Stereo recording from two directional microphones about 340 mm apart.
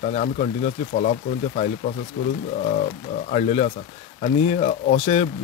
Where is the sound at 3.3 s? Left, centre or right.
Centre.